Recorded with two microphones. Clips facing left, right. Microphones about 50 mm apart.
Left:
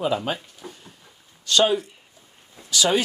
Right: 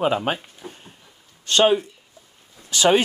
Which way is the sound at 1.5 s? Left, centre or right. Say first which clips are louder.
Right 3 dB; right.